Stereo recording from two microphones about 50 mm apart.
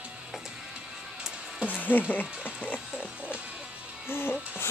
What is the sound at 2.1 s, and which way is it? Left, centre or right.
Speech, left.